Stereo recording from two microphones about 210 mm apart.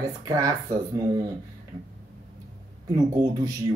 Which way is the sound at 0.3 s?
15° right (ahead or behind).